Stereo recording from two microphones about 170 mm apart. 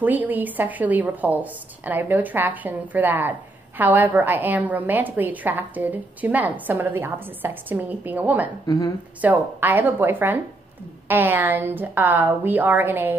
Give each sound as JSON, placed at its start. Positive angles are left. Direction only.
{"t": 0.0, "sound": "speech", "side_deg": -10}
{"t": 8.6, "sound": "speech", "side_deg": 20}
{"t": 9.2, "sound": "speech", "side_deg": -10}